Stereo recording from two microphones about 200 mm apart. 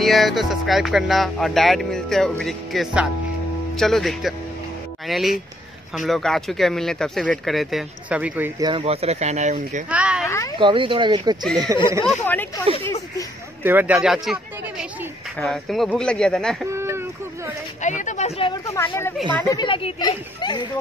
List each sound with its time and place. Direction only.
0.0 s music: centre (ahead or behind)
5.0 s speech: centre (ahead or behind)
5.9 s music: centre (ahead or behind)
8.5 s speech: 25° right (ahead or behind)
9.8 s a sound: 5° right (ahead or behind)
10.2 s cat: 15° left (ahead or behind)
10.6 s speech: 25° right (ahead or behind)
11.4 s music: centre (ahead or behind)
12.1 s speech: 10° left (ahead or behind)
13.6 s speech: 10° right (ahead or behind)
15.3 s music: centre (ahead or behind)
16.6 s a sound: 15° right (ahead or behind)
17.8 s a sound: 35° left (ahead or behind)
19.3 s speech: 15° left (ahead or behind)